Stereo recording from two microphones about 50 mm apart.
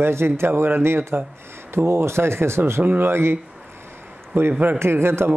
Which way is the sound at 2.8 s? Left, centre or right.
Right.